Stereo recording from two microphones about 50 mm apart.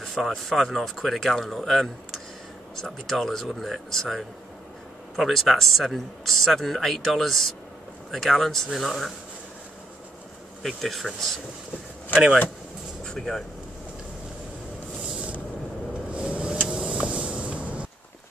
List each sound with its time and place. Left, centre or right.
0.0 s speech: centre
10.6 s speech: centre
13.0 s vehicle: centre
15.0 s a sound: centre
16.1 s vehicle: right
16.6 s vehicle: centre
17.4 s vehicle: right